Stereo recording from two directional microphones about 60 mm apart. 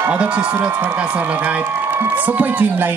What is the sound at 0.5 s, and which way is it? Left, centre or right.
A man's voice, right.